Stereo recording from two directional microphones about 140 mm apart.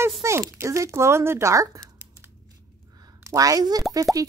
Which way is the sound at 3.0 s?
25° right (ahead or behind).